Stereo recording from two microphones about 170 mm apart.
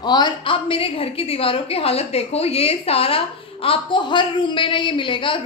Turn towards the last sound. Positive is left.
turn(degrees=30)  # may be behind; listen again after turning